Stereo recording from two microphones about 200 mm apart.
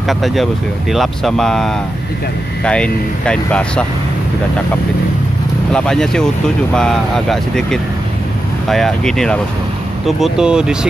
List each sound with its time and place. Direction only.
0.1 s speech: centre (ahead or behind)
5.7 s speech: 5° left (ahead or behind)